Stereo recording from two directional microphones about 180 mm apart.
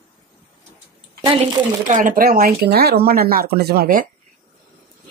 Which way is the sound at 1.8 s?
45° right (ahead or behind).